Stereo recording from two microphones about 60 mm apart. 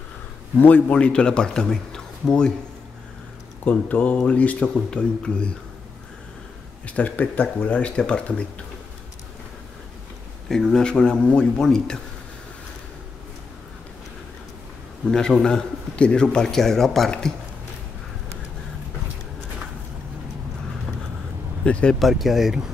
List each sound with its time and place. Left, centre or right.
0.6 s a man's voice: left
3.6 s a man's voice: left
6.9 s speech: left
10.5 s a man's voice: centre
15.0 s a man's voice: centre
21.6 s speech: centre
22.0 s speech: centre